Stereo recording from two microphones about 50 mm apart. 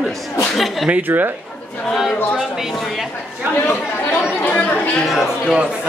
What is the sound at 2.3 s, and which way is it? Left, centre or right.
Speech, centre.